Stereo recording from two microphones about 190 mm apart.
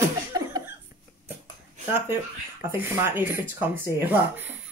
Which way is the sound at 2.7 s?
10° right (ahead or behind).